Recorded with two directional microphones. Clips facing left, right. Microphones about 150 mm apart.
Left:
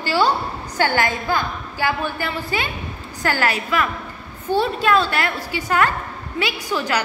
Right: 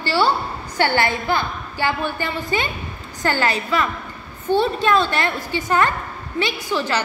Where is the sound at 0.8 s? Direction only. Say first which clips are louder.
Right 1 dB; 10° left (ahead or behind).